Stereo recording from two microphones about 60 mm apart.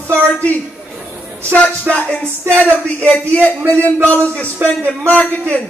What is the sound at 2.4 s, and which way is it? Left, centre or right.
A man's voice, left.